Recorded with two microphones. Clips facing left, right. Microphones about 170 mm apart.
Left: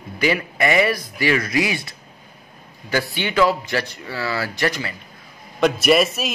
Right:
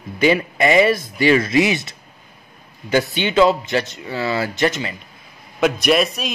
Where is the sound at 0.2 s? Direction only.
25° right (ahead or behind).